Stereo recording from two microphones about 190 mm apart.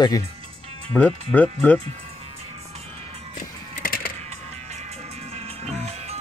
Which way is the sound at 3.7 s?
50° left (ahead or behind).